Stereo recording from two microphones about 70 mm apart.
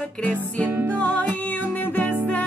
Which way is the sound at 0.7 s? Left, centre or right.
Right.